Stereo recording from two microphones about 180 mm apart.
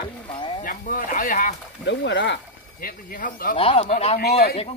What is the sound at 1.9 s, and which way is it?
Speech, 75° left (ahead or behind).